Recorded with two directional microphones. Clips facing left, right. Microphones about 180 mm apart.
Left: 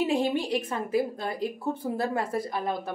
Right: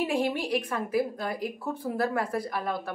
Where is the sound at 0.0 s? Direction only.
20° left (ahead or behind).